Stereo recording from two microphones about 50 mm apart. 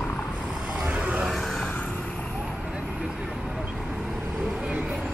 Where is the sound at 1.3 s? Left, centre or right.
Centre.